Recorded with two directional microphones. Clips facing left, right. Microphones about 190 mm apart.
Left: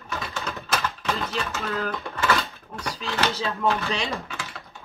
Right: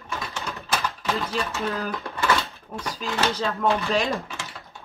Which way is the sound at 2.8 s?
Centre (ahead or behind).